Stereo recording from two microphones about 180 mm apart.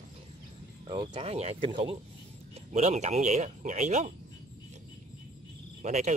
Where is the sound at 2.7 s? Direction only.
40° right (ahead or behind).